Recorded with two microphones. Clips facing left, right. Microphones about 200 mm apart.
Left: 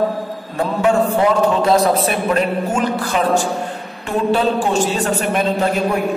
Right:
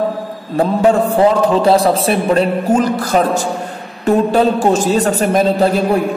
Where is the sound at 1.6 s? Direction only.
30° right (ahead or behind).